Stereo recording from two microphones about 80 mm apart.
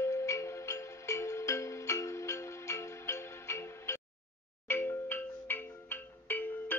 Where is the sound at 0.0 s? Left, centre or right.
Left.